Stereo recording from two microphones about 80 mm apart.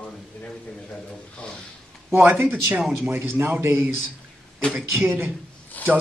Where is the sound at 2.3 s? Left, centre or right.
Right.